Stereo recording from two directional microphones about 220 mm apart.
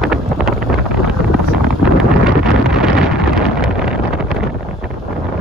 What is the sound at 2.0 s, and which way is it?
Wind noise, centre (ahead or behind).